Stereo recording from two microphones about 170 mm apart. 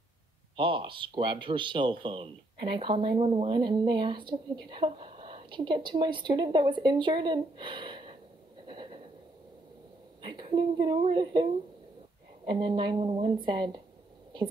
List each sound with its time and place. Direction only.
0.6 s speech: 30° right (ahead or behind)
8.6 s a sound: 30° right (ahead or behind)
10.2 s a woman's voice: 25° right (ahead or behind)
12.4 s speech: 25° right (ahead or behind)